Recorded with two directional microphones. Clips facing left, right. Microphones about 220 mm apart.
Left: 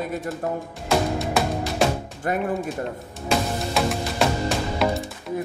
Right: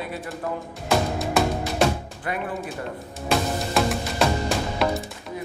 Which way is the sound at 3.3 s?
Centre (ahead or behind).